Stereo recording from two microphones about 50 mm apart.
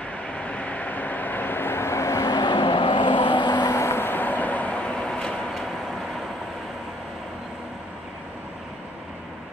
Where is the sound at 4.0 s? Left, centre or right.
Left; by 5.6 s centre.